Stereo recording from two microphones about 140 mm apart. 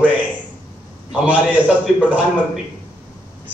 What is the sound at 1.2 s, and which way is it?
Speech, 10° right (ahead or behind).